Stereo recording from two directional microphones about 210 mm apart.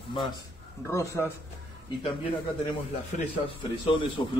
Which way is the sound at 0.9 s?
10° left (ahead or behind).